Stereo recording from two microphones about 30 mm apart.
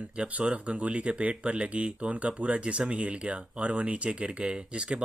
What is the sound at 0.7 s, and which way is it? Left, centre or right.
Speech, right.